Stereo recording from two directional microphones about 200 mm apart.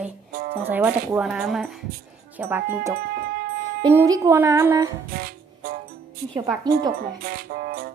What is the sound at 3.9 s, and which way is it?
Speech, 15° right (ahead or behind).